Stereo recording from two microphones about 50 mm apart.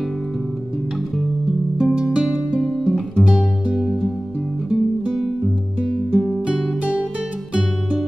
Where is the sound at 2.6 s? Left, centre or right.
Centre.